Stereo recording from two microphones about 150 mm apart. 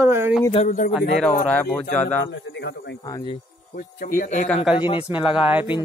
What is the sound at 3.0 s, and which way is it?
Speech, 30° left (ahead or behind).